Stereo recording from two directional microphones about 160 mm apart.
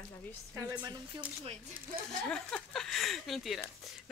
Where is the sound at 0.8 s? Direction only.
25° right (ahead or behind).